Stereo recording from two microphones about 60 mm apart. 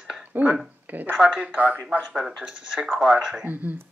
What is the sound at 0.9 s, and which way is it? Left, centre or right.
Speech, right.